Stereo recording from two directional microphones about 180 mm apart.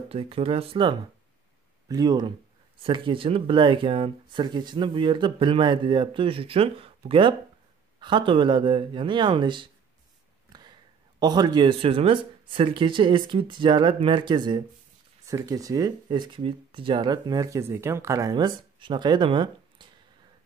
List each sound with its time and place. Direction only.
0.1 s speech: 30° right (ahead or behind)